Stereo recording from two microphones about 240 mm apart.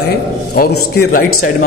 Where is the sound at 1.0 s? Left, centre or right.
Left.